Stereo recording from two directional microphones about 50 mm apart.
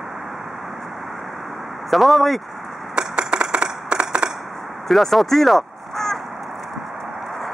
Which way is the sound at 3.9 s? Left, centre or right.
Right.